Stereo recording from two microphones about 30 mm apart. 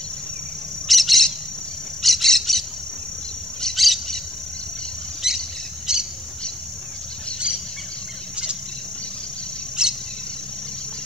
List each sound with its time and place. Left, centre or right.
0.8 s bird: centre
3.7 s bird: centre
5.2 s bird vocalization: centre
5.9 s a sound: right
9.8 s cricket: centre